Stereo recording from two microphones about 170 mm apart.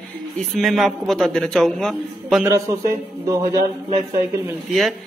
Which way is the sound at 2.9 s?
20° right (ahead or behind).